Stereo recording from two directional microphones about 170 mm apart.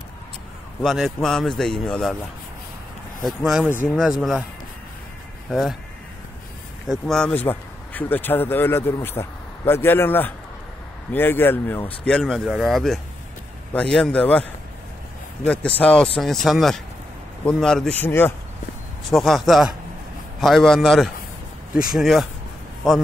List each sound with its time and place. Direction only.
0.8 s speech: centre (ahead or behind)
3.3 s speech: 5° right (ahead or behind)
5.5 s speech: centre (ahead or behind)
6.9 s speech: 5° left (ahead or behind)
15.4 s speech: 5° left (ahead or behind)
19.0 s speech: centre (ahead or behind)